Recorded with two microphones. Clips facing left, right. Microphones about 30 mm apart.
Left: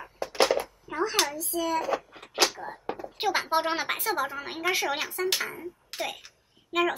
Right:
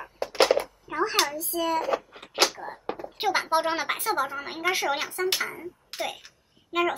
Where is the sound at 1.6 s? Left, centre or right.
Right.